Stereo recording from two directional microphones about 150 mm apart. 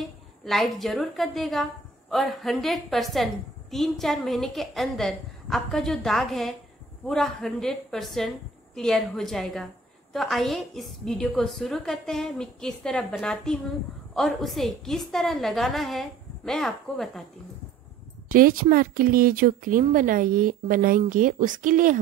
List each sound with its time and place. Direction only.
0.0 s a woman's voice: centre (ahead or behind)
18.3 s speech: 70° right (ahead or behind)